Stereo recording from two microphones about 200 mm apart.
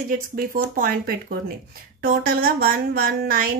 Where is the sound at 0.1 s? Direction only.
45° right (ahead or behind).